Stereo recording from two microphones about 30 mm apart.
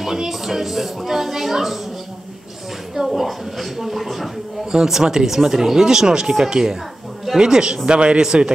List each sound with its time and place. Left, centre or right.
0.0 s a woman's voice: centre
2.9 s a woman's voice: centre
4.6 s a man's voice: centre; by 8.2 s right